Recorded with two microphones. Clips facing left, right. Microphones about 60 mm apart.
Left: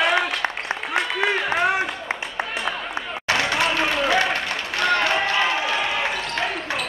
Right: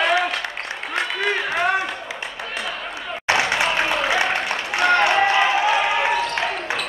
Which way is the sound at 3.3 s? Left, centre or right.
Centre.